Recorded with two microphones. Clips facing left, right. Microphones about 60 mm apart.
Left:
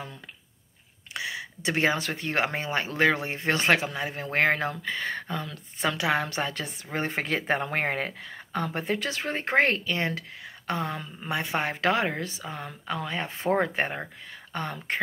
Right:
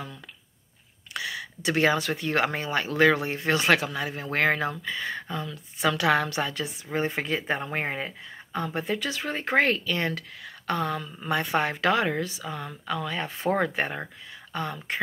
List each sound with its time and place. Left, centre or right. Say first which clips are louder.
1.1 s speech: right 1 dB; left
5.9 s a woman's voice: right 3 dB; centre
6.2 s speech: right 1 dB; left